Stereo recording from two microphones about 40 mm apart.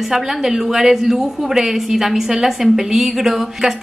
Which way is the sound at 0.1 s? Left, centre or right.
Centre.